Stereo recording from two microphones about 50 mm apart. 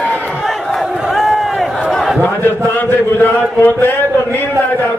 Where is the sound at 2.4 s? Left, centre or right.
Left.